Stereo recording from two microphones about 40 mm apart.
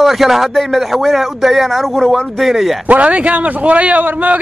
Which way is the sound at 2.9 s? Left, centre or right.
Right.